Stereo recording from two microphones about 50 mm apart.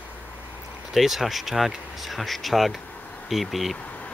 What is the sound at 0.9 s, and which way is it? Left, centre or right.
Speech, centre.